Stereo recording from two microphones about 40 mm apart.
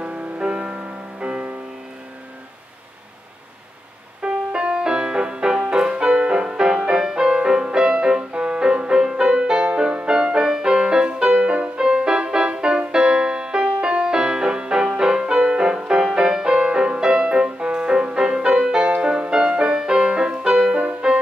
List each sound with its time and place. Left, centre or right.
0.0 s music: right
4.2 s music: right
20.7 s music: right